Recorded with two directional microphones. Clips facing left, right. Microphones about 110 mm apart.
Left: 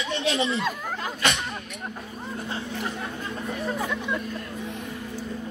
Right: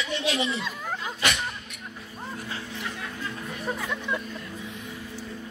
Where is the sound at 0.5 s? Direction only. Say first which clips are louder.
Left 4 dB; 50° left (ahead or behind).